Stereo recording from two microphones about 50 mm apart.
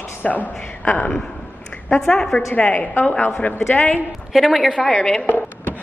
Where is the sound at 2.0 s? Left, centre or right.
Centre.